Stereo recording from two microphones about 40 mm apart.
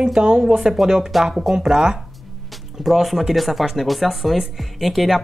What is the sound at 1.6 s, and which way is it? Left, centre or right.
Speech, centre.